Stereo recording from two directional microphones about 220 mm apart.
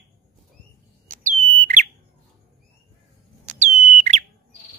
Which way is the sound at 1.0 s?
35° right (ahead or behind).